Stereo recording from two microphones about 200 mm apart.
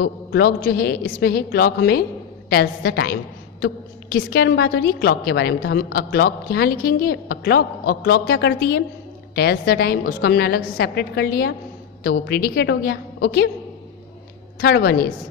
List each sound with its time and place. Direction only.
0.0 s a woman's voice: 50° left (ahead or behind)
14.6 s a woman's voice: 50° left (ahead or behind)